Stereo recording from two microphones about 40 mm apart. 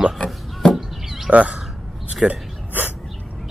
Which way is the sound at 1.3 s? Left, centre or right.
Right.